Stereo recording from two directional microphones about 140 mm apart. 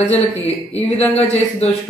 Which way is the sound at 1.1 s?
50° left (ahead or behind).